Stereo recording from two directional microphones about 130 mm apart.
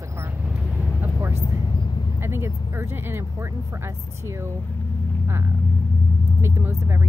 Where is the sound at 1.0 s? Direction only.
15° right (ahead or behind).